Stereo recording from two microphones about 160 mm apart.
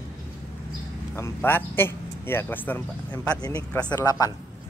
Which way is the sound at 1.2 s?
15° left (ahead or behind).